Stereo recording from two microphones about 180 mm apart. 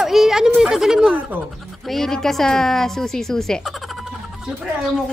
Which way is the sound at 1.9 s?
Centre (ahead or behind).